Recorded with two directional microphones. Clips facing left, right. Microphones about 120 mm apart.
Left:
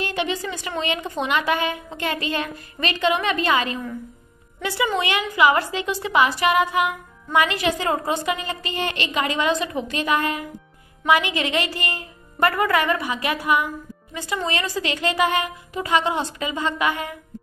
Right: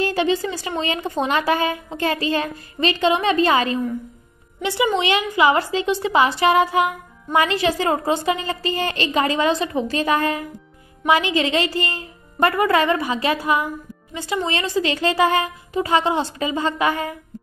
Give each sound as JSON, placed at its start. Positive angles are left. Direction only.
{"t": 0.0, "sound": "a woman's voice", "side_deg": -35}
{"t": 4.6, "sound": "a woman's voice", "side_deg": -20}